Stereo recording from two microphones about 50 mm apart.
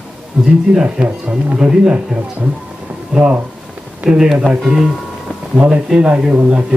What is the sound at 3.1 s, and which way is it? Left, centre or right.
A man's voice, right.